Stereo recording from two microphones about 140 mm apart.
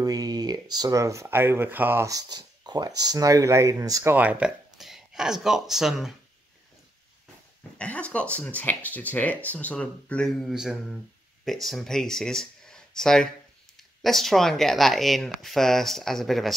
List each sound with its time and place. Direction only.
0.0 s speech: 25° right (ahead or behind); by 6.1 s centre (ahead or behind)
7.8 s speech: 10° left (ahead or behind)